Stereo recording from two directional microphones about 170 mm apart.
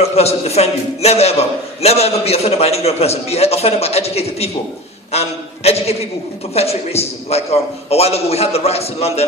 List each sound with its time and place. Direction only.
0.0 s a man's voice: 40° left (ahead or behind)